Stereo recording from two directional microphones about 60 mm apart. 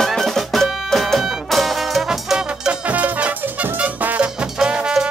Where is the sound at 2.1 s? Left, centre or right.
Centre.